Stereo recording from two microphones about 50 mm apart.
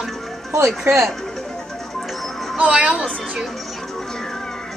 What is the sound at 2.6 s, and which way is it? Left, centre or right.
Speech, right.